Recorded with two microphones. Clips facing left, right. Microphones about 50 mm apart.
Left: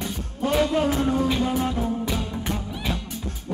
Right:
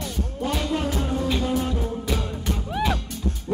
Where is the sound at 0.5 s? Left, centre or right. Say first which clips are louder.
Left 6 dB; left.